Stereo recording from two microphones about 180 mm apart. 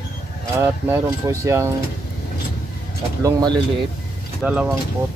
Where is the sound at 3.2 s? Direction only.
20° right (ahead or behind).